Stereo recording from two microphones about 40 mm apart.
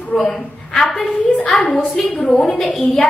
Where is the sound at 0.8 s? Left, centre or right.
Centre.